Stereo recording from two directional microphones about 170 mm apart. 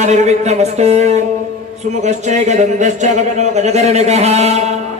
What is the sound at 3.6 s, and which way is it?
Speech, 40° right (ahead or behind).